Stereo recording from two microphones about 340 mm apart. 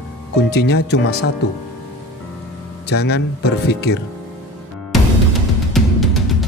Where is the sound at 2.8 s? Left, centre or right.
Left.